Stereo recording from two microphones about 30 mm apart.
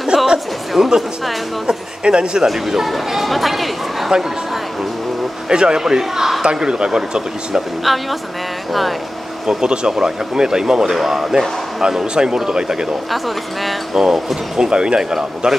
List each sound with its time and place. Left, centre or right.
0.1 s music: centre
0.7 s speech: centre
1.7 s speech: right
2.5 s speech: centre
5.5 s speech: right
7.8 s speech: centre
9.5 s speech: right
11.0 s speech: centre
12.1 s speech: right
13.1 s speech: centre
13.9 s speech: centre
14.7 s speech: right